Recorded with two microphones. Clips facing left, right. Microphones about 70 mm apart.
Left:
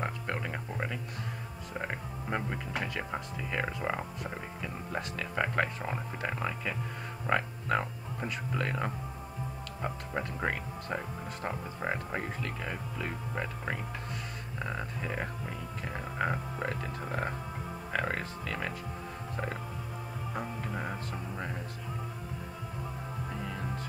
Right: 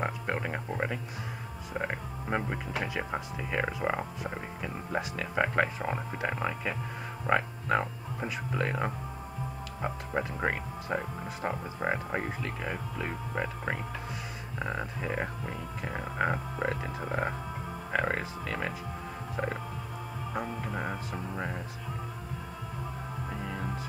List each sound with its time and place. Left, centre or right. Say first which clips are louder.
0.0 s a sound: right 3 dB; centre
1.7 s speech: right 3 dB; centre
19.3 s music: right 4 dB; centre
20.3 s speech: right 3 dB; centre
23.3 s music: right 2 dB; centre